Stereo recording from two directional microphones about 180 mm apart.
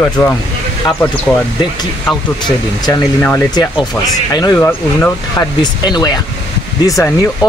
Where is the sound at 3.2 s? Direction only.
10° left (ahead or behind).